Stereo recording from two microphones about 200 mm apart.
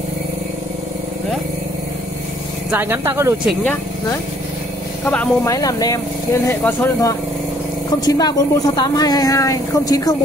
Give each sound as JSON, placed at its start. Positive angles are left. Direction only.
{"t": 2.7, "sound": "speech", "side_deg": -10}
{"t": 5.0, "sound": "speech", "side_deg": 5}
{"t": 5.5, "sound": "a woman's voice", "side_deg": 20}